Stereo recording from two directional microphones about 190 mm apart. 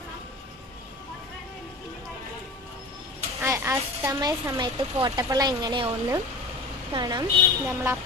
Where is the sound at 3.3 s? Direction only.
15° right (ahead or behind).